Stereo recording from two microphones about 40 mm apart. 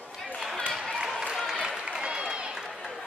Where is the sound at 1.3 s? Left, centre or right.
Centre.